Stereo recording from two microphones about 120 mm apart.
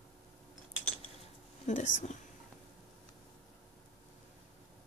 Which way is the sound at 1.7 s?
90° left.